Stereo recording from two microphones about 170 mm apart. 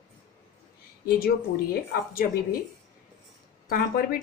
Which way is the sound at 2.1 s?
60° left (ahead or behind).